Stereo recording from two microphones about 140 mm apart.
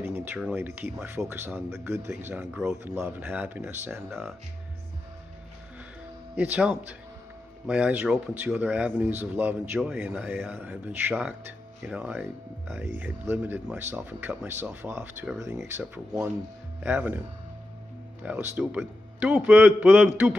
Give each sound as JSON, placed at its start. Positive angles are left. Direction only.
{"t": 0.0, "sound": "a sound", "side_deg": -15}
{"t": 0.6, "sound": "a man's voice", "side_deg": -15}
{"t": 6.3, "sound": "a man's voice", "side_deg": -10}
{"t": 18.2, "sound": "a man's voice", "side_deg": -15}